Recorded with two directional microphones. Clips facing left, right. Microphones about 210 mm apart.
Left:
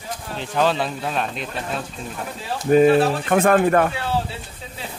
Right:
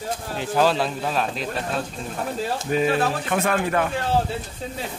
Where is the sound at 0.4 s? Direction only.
5° right (ahead or behind).